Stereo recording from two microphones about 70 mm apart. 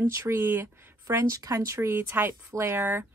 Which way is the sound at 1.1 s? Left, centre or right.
Right.